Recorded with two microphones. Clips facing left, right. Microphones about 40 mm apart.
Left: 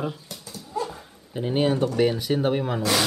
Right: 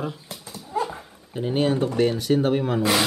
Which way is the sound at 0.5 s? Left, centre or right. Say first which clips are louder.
Right 3 dB; right.